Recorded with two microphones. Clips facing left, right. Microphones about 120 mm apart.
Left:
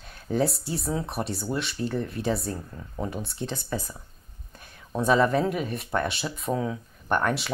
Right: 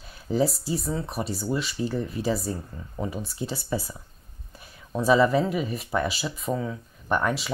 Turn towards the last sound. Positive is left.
turn(degrees=0)  # may be behind; listen again after turning